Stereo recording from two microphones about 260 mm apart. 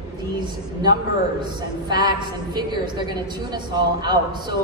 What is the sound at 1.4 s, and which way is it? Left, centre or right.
A woman's voice, centre.